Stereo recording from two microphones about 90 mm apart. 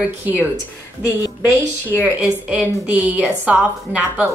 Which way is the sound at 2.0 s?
10° right (ahead or behind).